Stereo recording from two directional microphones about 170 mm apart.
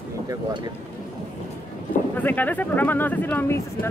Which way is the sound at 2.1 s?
10° left (ahead or behind).